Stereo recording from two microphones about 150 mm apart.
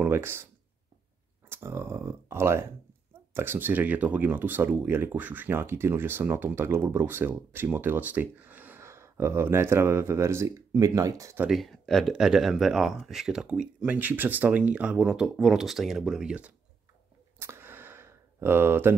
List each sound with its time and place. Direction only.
0.0 s speech: 15° right (ahead or behind)
1.5 s speech: 15° right (ahead or behind)
11.4 s speech: centre (ahead or behind)
17.4 s a sound: 15° right (ahead or behind)